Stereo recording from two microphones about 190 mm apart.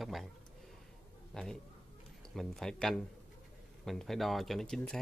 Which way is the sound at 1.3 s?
5° left (ahead or behind).